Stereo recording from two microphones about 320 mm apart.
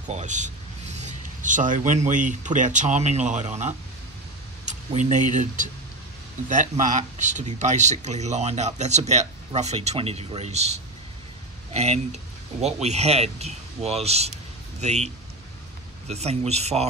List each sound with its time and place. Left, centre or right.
0.1 s speech: right
16.1 s speech: centre